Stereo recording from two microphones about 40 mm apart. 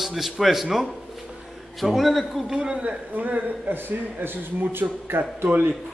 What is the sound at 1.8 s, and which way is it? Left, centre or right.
Speech, centre.